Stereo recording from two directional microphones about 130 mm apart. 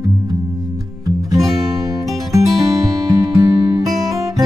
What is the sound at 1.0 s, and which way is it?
Music, 25° right (ahead or behind).